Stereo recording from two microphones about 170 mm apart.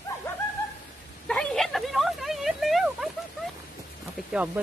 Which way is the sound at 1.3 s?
5° left (ahead or behind).